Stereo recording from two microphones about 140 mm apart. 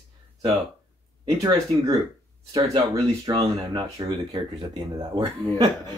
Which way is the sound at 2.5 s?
25° right (ahead or behind).